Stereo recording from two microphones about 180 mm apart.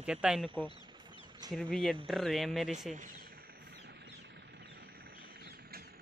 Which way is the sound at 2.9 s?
45° right (ahead or behind).